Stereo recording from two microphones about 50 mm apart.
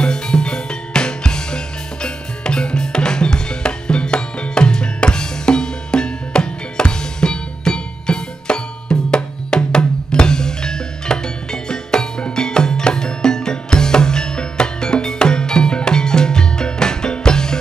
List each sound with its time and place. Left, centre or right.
0.0 s music: centre